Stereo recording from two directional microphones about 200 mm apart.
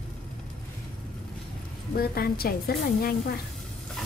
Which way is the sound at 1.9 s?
50° left (ahead or behind).